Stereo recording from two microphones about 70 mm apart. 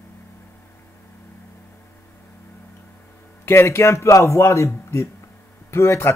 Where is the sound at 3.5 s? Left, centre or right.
Left.